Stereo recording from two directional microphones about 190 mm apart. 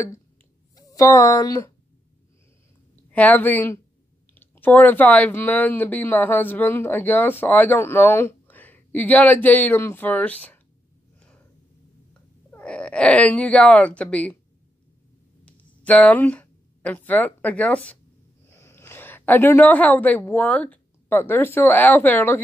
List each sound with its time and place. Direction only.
0.7 s speech: 15° left (ahead or behind)
3.1 s a woman's voice: 10° left (ahead or behind)
12.4 s speech: 5° left (ahead or behind)
15.4 s a woman's voice: 5° left (ahead or behind)